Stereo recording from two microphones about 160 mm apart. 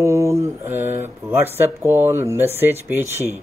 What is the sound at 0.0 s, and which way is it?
Speech, 20° right (ahead or behind).